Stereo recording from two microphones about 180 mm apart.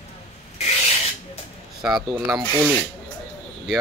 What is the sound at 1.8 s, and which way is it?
Speech, 5° right (ahead or behind).